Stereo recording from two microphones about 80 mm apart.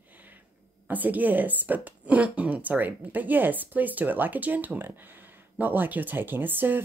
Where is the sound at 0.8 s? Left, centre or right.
Right.